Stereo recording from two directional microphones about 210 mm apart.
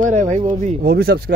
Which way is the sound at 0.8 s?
50° right (ahead or behind).